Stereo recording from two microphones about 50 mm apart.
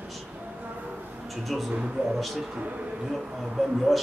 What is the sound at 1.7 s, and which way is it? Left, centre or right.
Speech, right.